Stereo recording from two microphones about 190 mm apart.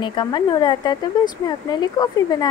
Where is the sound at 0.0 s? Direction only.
25° left (ahead or behind).